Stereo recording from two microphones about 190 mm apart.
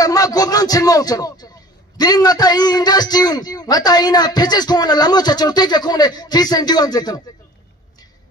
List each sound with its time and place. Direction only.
0.0 s a man's voice: 20° left (ahead or behind)